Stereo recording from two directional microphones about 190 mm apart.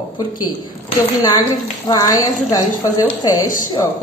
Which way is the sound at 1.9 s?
20° left (ahead or behind).